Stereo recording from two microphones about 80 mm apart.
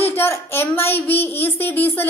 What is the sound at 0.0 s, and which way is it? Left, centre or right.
A child's voice, left.